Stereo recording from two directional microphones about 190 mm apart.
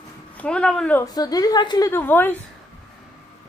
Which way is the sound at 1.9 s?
10° left (ahead or behind).